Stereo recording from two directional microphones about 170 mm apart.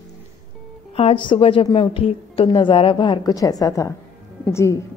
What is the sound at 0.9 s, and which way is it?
A woman's voice, 30° left (ahead or behind).